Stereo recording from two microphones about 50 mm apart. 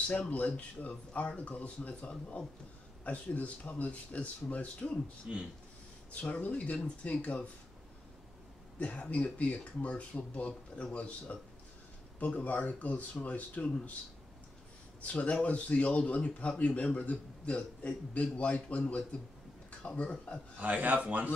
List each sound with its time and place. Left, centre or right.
0.3 s speech: left
5.3 s speech: right
6.4 s speech: left
8.7 s speech: left
15.0 s speech: left
20.5 s a man's voice: right